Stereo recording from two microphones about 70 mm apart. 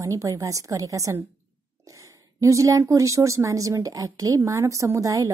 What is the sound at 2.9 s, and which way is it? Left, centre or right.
Speech, right.